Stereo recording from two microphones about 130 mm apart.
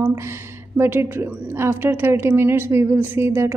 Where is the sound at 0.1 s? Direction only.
20° right (ahead or behind).